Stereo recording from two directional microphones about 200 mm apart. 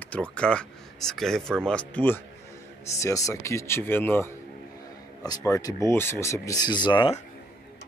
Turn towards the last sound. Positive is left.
turn(degrees=20)  # may be behind; listen again after turning